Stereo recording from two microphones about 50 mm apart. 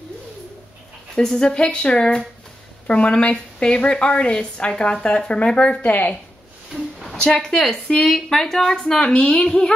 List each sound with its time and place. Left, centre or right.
1.1 s a woman's voice: centre
5.8 s speech: left
6.7 s a sound: centre
7.2 s a woman's voice: centre
7.4 s a woman's voice: centre